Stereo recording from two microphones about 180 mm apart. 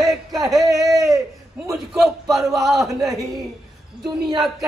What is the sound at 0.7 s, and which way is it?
Speech, 20° right (ahead or behind).